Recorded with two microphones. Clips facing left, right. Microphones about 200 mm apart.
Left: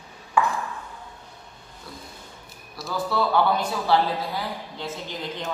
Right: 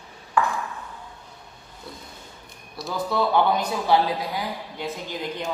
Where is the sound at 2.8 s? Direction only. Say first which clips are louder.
Right 2 dB; centre (ahead or behind).